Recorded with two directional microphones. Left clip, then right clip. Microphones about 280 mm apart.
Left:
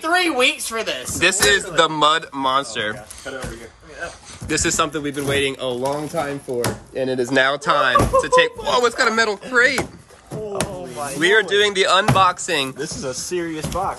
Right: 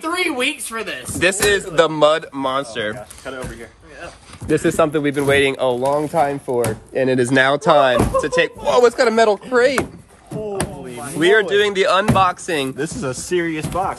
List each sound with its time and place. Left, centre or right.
0.0 s speech: centre
1.2 s speech: centre
4.0 s speech: centre
11.1 s speech: centre
13.4 s speech: right